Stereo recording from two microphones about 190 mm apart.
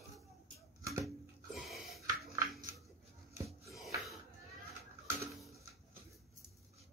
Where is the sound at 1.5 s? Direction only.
Centre (ahead or behind).